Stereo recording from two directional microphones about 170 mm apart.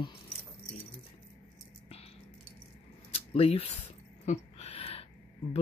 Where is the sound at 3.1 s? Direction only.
35° left (ahead or behind).